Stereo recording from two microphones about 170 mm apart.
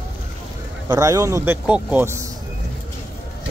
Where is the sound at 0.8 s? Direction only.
20° right (ahead or behind).